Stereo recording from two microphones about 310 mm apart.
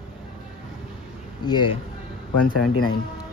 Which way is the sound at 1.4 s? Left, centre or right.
Centre.